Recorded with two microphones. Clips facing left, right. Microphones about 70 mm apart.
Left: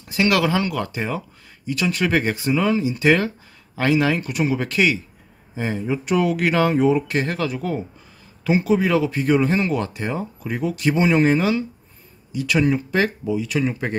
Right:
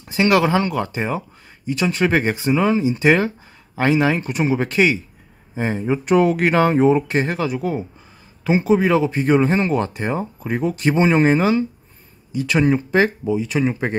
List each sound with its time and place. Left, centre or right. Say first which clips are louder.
0.1 s speech: right 3 dB; right